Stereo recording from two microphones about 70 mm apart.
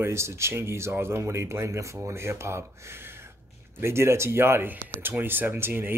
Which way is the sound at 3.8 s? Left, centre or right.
Right.